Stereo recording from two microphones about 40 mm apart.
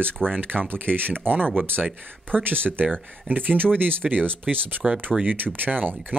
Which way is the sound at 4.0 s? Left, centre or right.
Right.